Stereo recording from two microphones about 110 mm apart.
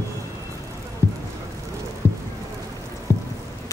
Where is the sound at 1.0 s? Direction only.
25° left (ahead or behind).